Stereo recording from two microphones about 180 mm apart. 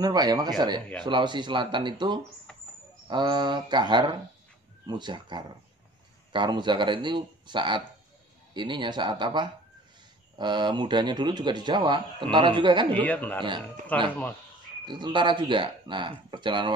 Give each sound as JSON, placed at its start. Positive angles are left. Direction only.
{"t": 0.0, "sound": "speech", "side_deg": -20}
{"t": 12.9, "sound": "a man's voice", "side_deg": 10}
{"t": 14.9, "sound": "speech", "side_deg": -25}